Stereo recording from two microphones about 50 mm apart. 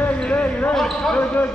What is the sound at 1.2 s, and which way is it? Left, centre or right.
Speech, left.